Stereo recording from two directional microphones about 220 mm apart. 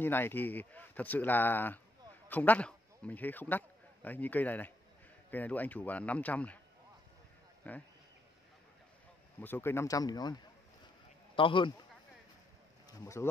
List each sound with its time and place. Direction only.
0.0 s speech: 10° left (ahead or behind)
7.7 s speech: 5° left (ahead or behind)
9.4 s a man's voice: 10° left (ahead or behind)
13.0 s speech: 15° left (ahead or behind)